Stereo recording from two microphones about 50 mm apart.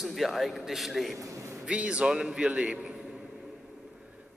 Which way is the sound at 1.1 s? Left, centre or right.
Right.